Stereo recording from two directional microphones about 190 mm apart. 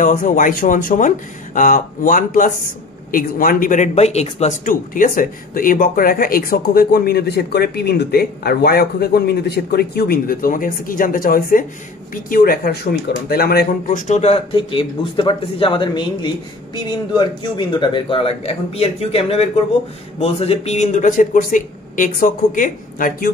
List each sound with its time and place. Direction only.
0.0 s speech: 45° left (ahead or behind)